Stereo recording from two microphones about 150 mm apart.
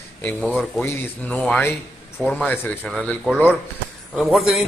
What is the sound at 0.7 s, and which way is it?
A man's voice, 10° left (ahead or behind).